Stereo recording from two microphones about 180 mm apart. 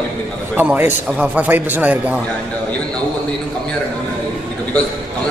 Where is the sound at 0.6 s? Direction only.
10° right (ahead or behind).